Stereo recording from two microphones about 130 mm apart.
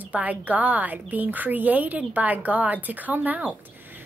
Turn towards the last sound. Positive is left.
turn(degrees=-15)  # may be behind; listen again after turning